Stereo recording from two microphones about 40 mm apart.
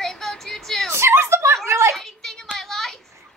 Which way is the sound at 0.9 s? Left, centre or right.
Right.